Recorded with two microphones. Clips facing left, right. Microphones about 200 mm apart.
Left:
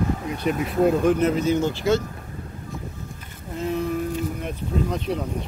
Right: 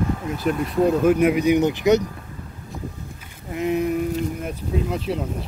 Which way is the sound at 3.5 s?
15° right (ahead or behind).